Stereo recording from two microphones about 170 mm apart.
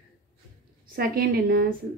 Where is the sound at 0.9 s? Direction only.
60° right (ahead or behind).